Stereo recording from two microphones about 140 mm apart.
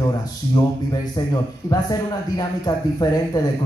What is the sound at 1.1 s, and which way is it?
A man's voice, 30° left (ahead or behind).